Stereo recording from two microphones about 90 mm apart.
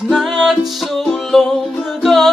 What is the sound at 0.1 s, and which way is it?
Music, 5° right (ahead or behind).